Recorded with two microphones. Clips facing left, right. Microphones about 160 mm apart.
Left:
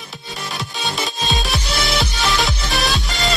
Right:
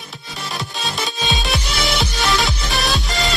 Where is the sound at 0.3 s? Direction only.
Centre (ahead or behind).